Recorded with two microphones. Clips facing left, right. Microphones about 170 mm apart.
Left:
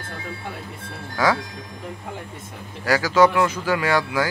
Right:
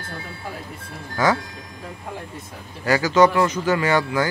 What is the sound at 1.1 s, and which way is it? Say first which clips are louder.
Speech: right 1 dB; centre (ahead or behind).